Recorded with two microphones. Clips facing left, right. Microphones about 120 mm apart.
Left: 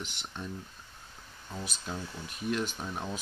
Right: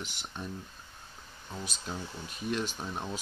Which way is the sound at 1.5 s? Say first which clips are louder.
Left 1 dB; centre (ahead or behind).